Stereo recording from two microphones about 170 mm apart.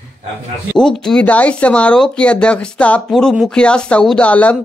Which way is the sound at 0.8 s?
5° left (ahead or behind).